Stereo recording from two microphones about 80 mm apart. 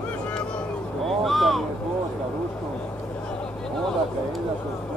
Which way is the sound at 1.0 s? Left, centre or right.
Centre.